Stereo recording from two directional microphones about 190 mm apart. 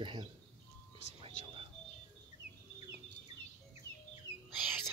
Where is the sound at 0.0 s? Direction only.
25° right (ahead or behind).